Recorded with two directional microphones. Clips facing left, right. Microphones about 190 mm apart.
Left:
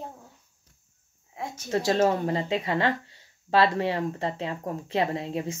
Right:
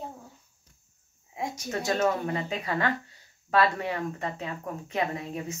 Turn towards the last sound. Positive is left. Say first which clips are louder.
# left 3 dB
turn(degrees=30)  # may be behind; listen again after turning